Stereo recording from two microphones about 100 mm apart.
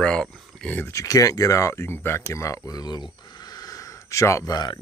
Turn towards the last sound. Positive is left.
turn(degrees=40)  # may be behind; listen again after turning